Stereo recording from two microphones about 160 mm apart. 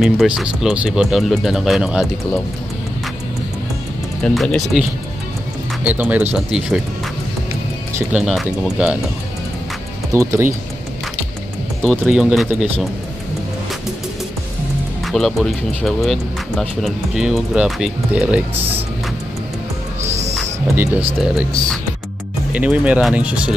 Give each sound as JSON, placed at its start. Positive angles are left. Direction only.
{"t": 0.0, "sound": "speech", "side_deg": 0}
{"t": 4.2, "sound": "speech", "side_deg": 0}
{"t": 5.9, "sound": "speech", "side_deg": -10}
{"t": 8.1, "sound": "speech", "side_deg": -5}
{"t": 10.1, "sound": "speech", "side_deg": -20}
{"t": 11.8, "sound": "speech", "side_deg": 0}
{"t": 15.0, "sound": "speech", "side_deg": 0}
{"t": 18.5, "sound": "speech", "side_deg": -35}
{"t": 20.1, "sound": "owl", "side_deg": -45}
{"t": 20.7, "sound": "speech", "side_deg": -15}
{"t": 22.5, "sound": "speech", "side_deg": -10}